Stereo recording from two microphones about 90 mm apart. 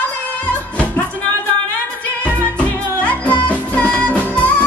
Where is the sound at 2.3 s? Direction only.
15° left (ahead or behind).